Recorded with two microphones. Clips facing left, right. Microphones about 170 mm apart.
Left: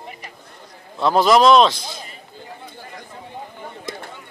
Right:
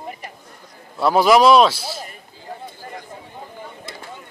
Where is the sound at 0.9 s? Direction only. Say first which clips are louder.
Right 1 dB; 10° right (ahead or behind).